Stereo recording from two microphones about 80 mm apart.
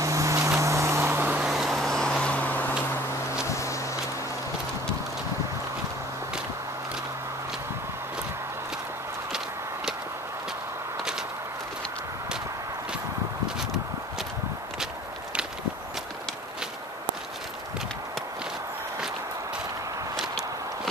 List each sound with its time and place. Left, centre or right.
0.0 s vehicle: right
1.4 s vehicle: centre; by 2.7 s left
3.4 s a sound: left
20.2 s walk: centre